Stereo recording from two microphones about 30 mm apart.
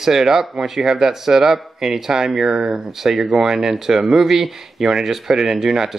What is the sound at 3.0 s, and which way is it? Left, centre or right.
Speech, centre.